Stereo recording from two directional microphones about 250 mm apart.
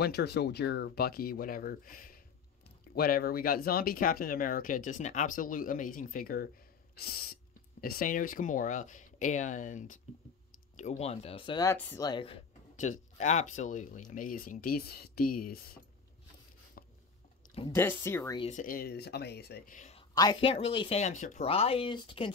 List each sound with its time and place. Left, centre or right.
0.0 s speech: left; by 12.4 s centre
12.9 s speech: left
16.8 s a sound: left
17.6 s speech: centre
18.4 s speech: left